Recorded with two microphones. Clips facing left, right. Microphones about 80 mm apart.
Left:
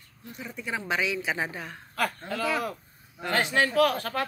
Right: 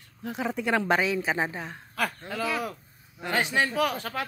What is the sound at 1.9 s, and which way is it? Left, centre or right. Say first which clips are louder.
Speech: left 1 dB; centre.